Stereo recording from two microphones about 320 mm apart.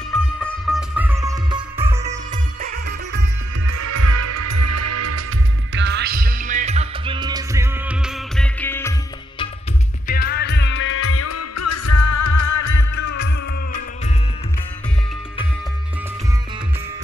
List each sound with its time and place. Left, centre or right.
0.1 s music: centre
3.6 s music: right
5.7 s music: right; by 8.9 s centre
10.0 s music: left